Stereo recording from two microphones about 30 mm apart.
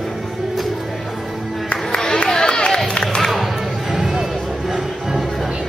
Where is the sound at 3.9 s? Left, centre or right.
Centre.